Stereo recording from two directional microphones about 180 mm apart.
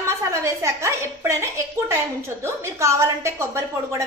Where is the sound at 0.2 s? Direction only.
15° right (ahead or behind).